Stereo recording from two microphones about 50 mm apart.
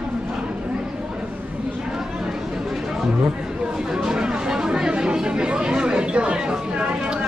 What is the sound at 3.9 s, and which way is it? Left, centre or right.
Chatter, centre.